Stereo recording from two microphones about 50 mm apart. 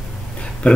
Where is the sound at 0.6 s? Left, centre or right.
Left.